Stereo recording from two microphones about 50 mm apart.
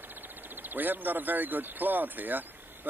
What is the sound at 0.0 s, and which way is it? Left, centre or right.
A man's voice, right.